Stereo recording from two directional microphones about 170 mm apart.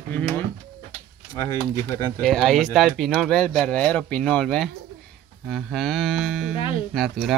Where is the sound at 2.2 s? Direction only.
Centre (ahead or behind).